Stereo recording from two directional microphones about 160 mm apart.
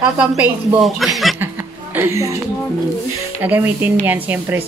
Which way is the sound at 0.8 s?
Centre (ahead or behind).